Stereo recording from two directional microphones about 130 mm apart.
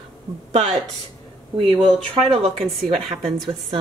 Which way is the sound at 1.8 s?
5° left (ahead or behind).